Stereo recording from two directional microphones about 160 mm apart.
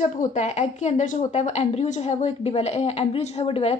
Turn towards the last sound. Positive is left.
turn(degrees=35)  # may be behind; listen again after turning